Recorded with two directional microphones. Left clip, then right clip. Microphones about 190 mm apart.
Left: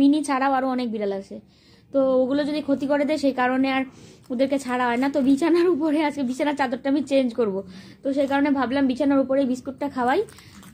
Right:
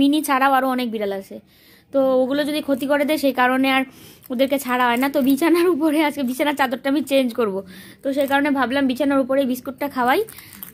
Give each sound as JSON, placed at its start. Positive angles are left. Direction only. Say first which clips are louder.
{"t": 0.0, "sound": "a woman's voice", "louder": "right 3 dB", "side_deg": -25}